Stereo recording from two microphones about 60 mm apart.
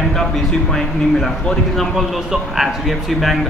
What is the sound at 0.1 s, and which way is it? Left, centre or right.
Speech, centre.